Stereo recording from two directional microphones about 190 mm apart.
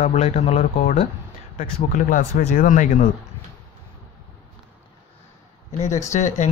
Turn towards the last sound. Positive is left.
turn(degrees=40)  # may be behind; listen again after turning